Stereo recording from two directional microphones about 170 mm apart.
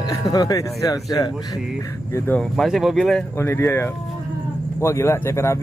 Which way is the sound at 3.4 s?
15° left (ahead or behind).